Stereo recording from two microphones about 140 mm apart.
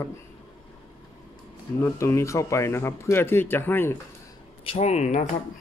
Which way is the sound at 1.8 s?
20° left (ahead or behind).